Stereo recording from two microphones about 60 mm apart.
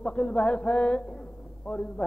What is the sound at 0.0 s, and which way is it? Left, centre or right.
A man's voice, centre.